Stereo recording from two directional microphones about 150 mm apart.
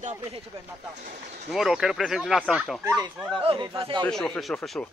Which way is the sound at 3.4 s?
35° right (ahead or behind).